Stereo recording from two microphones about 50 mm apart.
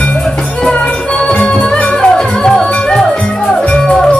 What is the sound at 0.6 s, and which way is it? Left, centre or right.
Music, left.